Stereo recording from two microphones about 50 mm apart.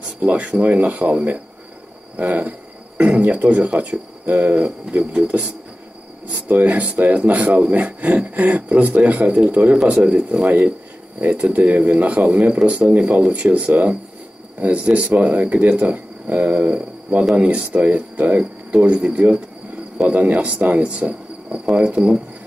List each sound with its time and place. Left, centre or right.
0.0 s cricket: right
8.4 s speech: right
11.1 s cricket: right
16.3 s speech: right
17.4 s cricket: right